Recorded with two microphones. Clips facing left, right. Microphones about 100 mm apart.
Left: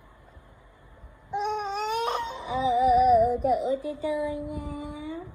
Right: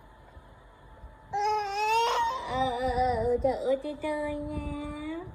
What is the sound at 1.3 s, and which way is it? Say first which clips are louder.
Baby cry: right 1 dB; 90° right.